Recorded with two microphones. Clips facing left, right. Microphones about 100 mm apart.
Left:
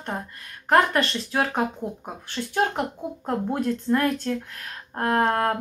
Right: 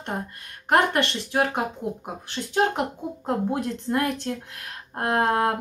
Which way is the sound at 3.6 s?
20° right (ahead or behind).